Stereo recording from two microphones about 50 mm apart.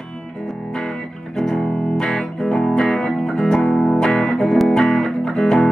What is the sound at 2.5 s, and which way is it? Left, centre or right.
Music, centre.